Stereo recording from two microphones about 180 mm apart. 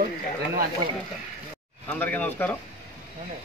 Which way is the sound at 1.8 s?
10° left (ahead or behind).